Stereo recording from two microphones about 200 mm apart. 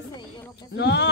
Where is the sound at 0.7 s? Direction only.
60° left (ahead or behind).